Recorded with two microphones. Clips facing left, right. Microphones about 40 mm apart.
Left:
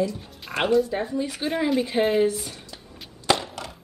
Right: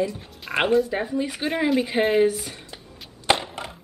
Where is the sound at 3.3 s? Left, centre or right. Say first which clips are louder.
Right 1 dB; right.